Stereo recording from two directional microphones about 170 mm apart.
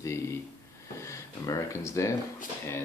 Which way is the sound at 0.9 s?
15° left (ahead or behind).